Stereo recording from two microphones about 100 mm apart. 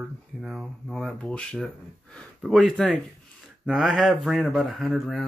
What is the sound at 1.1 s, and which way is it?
Speech, 10° left (ahead or behind).